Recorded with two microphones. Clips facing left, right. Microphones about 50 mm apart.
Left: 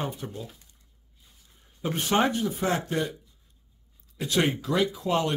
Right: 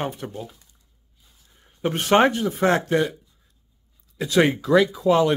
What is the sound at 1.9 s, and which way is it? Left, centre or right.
Speech, right.